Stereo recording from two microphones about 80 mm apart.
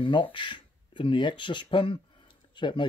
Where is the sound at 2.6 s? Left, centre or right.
Left.